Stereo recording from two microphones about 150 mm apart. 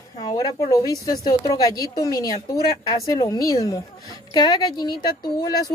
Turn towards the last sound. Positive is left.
turn(degrees=30)  # may be behind; listen again after turning